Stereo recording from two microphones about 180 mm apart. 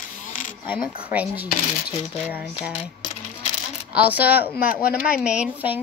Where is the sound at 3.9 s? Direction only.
10° right (ahead or behind).